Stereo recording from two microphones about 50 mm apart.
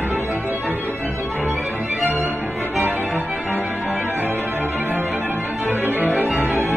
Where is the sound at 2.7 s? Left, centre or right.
Right.